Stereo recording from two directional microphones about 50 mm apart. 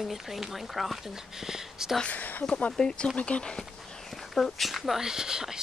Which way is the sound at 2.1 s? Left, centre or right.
Left.